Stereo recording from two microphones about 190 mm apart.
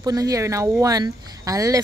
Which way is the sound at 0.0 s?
20° right (ahead or behind).